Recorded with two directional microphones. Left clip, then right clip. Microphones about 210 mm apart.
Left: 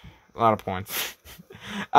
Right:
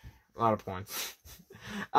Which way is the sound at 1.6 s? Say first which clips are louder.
Left 6 dB; 20° left (ahead or behind).